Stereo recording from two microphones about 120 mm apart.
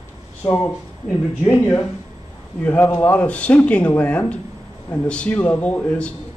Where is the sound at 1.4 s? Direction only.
20° left (ahead or behind).